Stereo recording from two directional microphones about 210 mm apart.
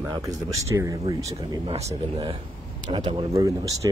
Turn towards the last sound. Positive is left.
turn(degrees=-15)  # may be behind; listen again after turning